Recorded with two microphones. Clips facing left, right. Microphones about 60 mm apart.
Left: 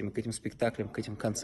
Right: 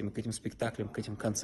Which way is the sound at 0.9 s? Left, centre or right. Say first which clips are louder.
Left 1 dB; left.